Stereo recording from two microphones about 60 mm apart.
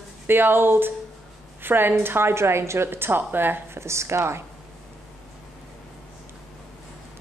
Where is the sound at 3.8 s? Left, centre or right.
Right.